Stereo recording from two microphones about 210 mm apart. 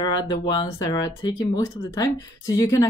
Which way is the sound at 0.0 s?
20° left (ahead or behind).